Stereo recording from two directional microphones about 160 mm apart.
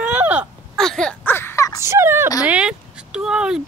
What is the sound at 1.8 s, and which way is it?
Speech, 15° right (ahead or behind).